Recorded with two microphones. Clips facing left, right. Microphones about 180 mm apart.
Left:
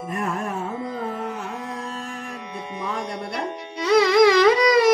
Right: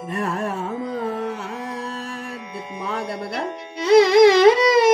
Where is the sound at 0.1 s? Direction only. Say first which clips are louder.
Right 3 dB; 35° right (ahead or behind).